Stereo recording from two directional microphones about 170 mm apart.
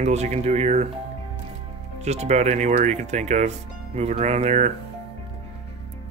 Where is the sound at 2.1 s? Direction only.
40° right (ahead or behind).